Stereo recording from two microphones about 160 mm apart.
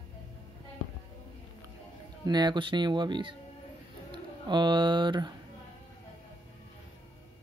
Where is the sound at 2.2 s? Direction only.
25° right (ahead or behind).